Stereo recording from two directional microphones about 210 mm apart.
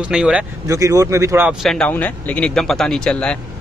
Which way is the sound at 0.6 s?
15° right (ahead or behind).